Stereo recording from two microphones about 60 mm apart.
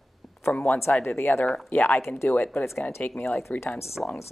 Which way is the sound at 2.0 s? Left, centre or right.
Left.